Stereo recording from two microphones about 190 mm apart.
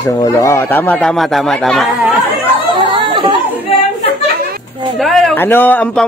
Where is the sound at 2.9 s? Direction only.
25° right (ahead or behind).